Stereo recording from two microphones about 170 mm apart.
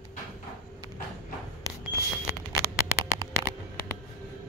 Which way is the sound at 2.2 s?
15° left (ahead or behind).